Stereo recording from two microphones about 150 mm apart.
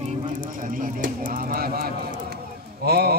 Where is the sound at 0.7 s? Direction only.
65° right (ahead or behind); by 1.9 s 90° right.